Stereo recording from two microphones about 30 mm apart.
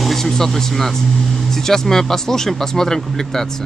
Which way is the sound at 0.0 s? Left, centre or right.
Centre.